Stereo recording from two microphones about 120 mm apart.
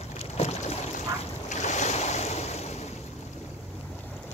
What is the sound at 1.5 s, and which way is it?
Waves, 80° left.